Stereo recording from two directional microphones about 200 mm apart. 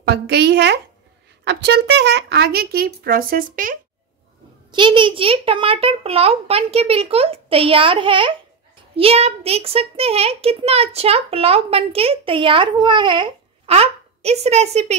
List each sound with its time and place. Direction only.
0.0 s a woman's voice: 55° right (ahead or behind)
4.6 s a child's voice: 25° right (ahead or behind)